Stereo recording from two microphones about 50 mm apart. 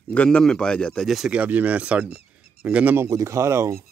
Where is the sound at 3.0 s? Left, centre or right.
Right.